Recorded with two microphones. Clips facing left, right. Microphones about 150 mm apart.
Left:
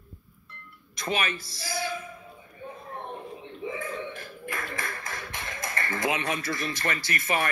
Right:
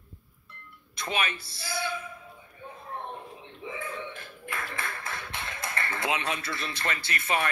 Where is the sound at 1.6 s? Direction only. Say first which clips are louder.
Even; 40° left (ahead or behind).